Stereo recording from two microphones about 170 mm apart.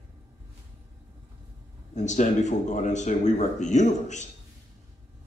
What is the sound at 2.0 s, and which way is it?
Speech, 45° left (ahead or behind).